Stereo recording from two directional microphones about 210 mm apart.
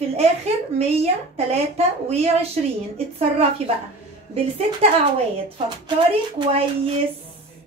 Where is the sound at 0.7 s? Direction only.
30° right (ahead or behind).